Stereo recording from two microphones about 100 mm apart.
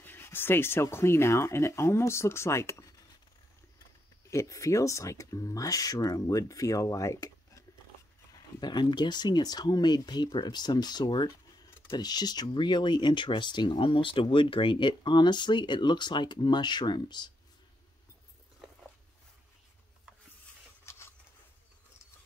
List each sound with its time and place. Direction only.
0.0 s speech: 20° left (ahead or behind)
4.3 s speech: 30° left (ahead or behind)
8.3 s speech: 40° left (ahead or behind)